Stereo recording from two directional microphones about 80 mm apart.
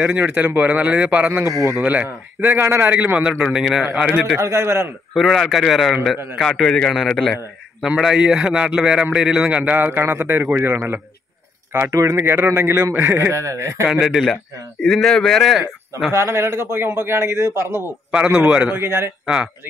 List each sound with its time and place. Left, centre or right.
0.0 s a man's voice: centre
1.4 s a man's voice: right
1.8 s a man's voice: right; by 4.1 s centre
4.4 s a man's voice: right
5.1 s a man's voice: centre
7.8 s a man's voice: centre; by 10.8 s right
11.7 s speech: right
12.2 s a man's voice: right
14.0 s a man's voice: centre
16.1 s a man's voice: right
18.3 s a man's voice: centre
18.8 s a man's voice: right
19.2 s speech: centre